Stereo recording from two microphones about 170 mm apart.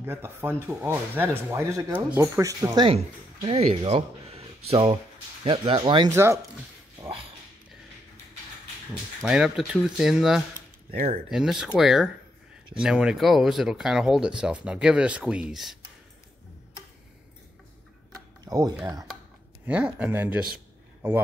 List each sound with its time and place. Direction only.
0.0 s speech: 15° right (ahead or behind)
6.1 s speech: 15° right (ahead or behind)
9.2 s speech: 5° right (ahead or behind)
18.4 s a sound: 20° right (ahead or behind)
19.6 s speech: 10° right (ahead or behind)
20.5 s a sound: 15° right (ahead or behind)